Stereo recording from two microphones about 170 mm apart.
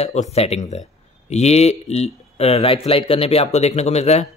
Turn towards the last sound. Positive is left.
turn(degrees=40)  # may be behind; listen again after turning